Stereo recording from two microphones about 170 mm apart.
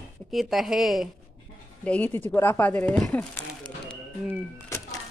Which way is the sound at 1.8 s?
10° left (ahead or behind).